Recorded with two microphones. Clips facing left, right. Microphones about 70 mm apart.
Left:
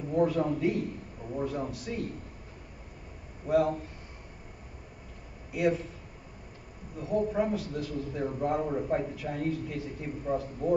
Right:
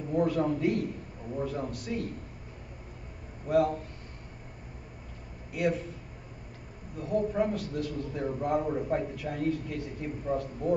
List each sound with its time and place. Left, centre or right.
0.1 s a man's voice: centre
3.4 s a man's voice: centre
5.5 s a man's voice: centre
7.0 s a man's voice: centre